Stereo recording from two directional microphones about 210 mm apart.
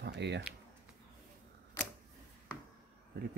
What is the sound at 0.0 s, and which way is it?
Speech, 55° right (ahead or behind).